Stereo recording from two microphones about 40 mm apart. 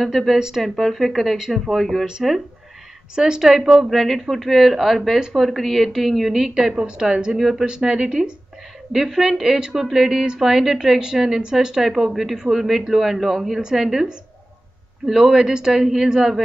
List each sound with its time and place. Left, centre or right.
0.0 s a woman's voice: centre
3.2 s a woman's voice: centre
7.0 s speech: centre
7.3 s a woman's voice: centre
8.0 s speech: centre
8.9 s a woman's voice: centre
15.0 s speech: centre